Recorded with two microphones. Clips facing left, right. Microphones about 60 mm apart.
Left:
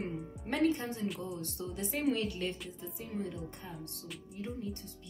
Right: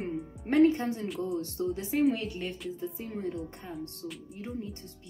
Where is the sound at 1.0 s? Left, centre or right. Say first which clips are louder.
Right 5 dB; centre.